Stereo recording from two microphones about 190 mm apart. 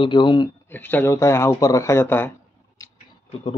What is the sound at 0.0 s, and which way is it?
Speech, 25° left (ahead or behind).